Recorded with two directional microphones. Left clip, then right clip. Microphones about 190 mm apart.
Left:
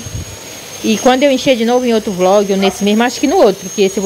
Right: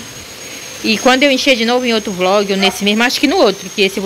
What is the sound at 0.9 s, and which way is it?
Speech, 15° left (ahead or behind).